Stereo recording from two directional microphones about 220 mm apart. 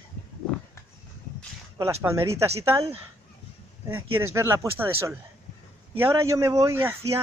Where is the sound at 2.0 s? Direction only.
15° right (ahead or behind).